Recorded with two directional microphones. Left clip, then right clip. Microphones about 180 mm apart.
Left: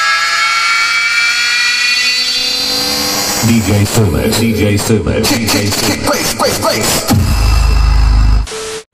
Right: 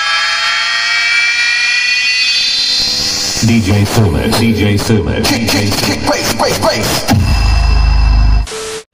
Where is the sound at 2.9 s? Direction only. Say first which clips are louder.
Even; 25° right (ahead or behind).